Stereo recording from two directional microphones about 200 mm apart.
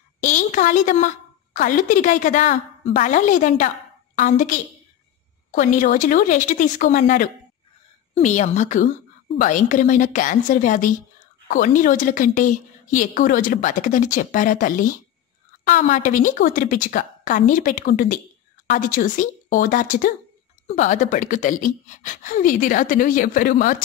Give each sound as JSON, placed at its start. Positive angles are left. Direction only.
{"t": 0.2, "sound": "a woman's voice", "side_deg": 40}